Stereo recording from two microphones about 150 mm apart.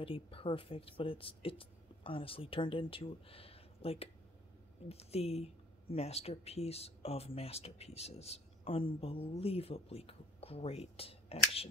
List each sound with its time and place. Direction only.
0.0 s speech: 35° left (ahead or behind)